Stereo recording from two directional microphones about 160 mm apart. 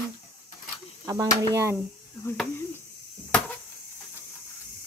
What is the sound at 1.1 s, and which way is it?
Speech, 20° right (ahead or behind).